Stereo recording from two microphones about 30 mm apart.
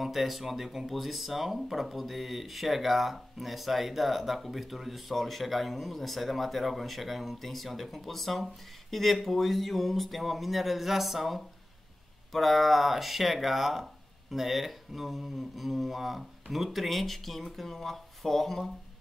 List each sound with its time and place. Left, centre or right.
0.0 s speech: centre